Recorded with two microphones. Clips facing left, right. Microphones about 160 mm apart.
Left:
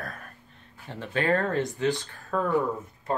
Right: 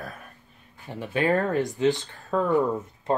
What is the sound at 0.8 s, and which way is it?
Speech, 15° right (ahead or behind).